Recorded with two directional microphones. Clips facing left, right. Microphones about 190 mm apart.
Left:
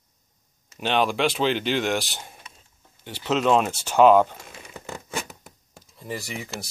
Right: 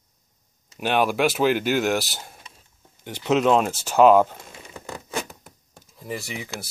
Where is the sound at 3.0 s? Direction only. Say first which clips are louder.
Right 3 dB; 15° right (ahead or behind).